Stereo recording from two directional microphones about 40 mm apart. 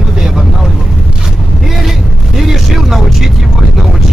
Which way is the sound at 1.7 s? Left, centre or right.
Centre.